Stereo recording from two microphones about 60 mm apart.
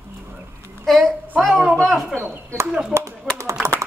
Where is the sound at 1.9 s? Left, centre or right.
Centre.